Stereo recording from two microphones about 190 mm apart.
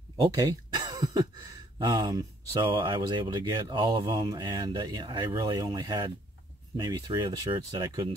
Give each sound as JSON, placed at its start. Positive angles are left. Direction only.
{"t": 0.2, "sound": "throat clearing", "side_deg": -20}
{"t": 1.8, "sound": "speech", "side_deg": -20}